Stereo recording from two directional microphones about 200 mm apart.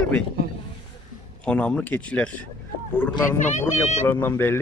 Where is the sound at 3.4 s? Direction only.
35° left (ahead or behind).